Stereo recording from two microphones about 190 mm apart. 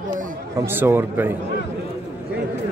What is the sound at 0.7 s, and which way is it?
Speech, 10° right (ahead or behind).